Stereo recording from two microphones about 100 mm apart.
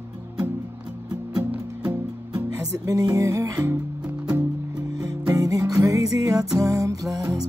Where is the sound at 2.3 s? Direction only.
35° right (ahead or behind).